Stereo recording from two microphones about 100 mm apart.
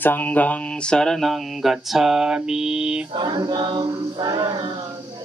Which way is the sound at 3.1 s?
45° right (ahead or behind).